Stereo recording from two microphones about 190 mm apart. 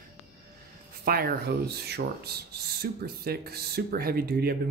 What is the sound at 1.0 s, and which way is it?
Speech, 55° right (ahead or behind).